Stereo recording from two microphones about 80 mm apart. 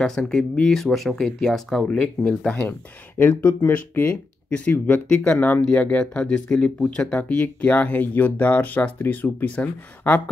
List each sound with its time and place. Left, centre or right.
0.0 s speech: centre
3.2 s speech: left